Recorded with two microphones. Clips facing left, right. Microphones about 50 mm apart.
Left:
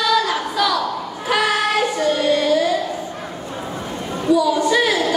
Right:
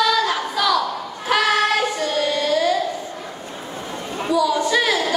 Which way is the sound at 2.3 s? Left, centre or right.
Left.